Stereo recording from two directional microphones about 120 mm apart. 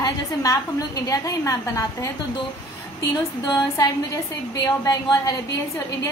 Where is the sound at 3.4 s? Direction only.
35° left (ahead or behind).